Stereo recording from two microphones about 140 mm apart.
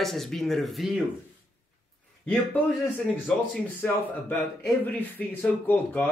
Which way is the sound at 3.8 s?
15° left (ahead or behind).